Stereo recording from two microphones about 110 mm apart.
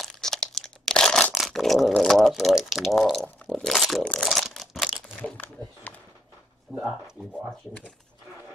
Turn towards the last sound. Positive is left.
turn(degrees=10)  # may be behind; listen again after turning